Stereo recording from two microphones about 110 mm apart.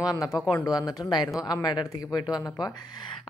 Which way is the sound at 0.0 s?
35° left (ahead or behind).